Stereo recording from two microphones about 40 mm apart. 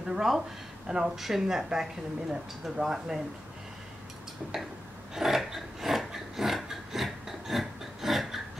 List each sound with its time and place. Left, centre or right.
0.1 s speech: centre
1.1 s speech: centre
5.1 s a sound: centre